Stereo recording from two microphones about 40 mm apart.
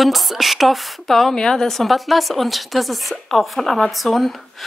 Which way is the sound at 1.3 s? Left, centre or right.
Centre.